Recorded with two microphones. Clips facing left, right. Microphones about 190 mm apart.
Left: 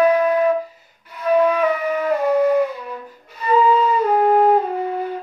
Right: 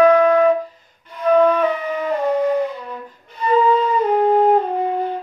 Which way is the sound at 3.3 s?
10° left (ahead or behind).